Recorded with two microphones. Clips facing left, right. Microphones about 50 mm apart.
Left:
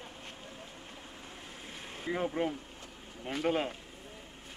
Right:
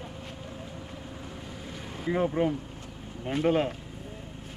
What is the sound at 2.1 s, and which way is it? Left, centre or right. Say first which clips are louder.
Speech: right 6 dB; centre.